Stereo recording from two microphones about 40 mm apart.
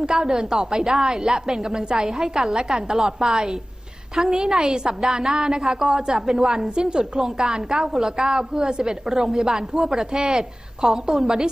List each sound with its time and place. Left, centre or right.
0.0 s a woman's voice: centre
9.0 s speech: centre